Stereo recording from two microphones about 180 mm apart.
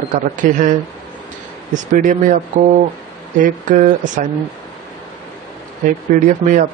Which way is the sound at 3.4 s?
45° right (ahead or behind).